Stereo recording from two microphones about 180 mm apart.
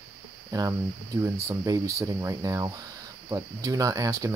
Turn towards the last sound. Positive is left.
turn(degrees=-20)  # may be behind; listen again after turning